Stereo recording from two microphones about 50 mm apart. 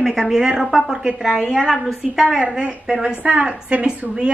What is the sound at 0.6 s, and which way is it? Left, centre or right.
A woman's voice, centre.